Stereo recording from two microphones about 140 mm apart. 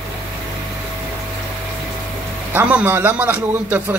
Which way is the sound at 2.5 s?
10° right (ahead or behind).